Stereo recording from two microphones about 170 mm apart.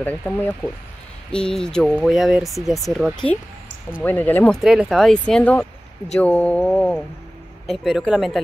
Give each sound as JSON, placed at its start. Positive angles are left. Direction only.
{"t": 0.0, "sound": "mantra", "side_deg": 10}
{"t": 1.3, "sound": "speech", "side_deg": 5}
{"t": 4.0, "sound": "mantra", "side_deg": 10}
{"t": 4.6, "sound": "speech", "side_deg": -5}
{"t": 6.1, "sound": "mantra", "side_deg": 10}
{"t": 7.7, "sound": "speech", "side_deg": 0}